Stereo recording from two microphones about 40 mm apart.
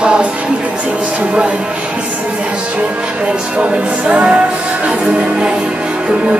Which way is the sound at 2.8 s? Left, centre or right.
Right.